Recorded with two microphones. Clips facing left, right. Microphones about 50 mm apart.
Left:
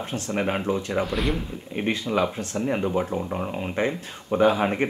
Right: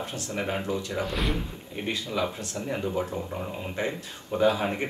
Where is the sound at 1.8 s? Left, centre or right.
Left.